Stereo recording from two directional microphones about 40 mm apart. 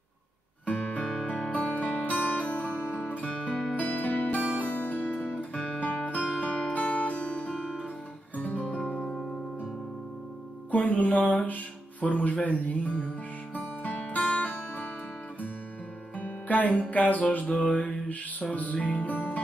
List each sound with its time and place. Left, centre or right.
0.7 s music: left
2.8 s music: left
3.2 s music: left
8.4 s music: left
10.7 s music: left
16.2 s music: left